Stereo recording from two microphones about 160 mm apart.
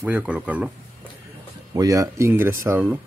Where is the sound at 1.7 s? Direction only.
20° right (ahead or behind).